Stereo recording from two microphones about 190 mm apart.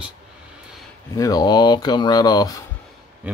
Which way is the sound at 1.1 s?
20° left (ahead or behind).